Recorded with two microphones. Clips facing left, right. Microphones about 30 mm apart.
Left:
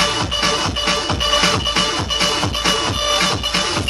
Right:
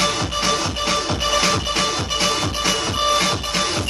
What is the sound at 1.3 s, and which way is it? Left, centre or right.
Music, left.